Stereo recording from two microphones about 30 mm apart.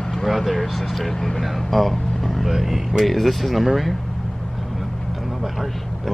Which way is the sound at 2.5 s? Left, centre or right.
Centre.